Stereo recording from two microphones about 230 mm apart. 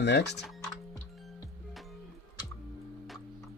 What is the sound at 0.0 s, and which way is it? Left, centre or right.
Speech, left.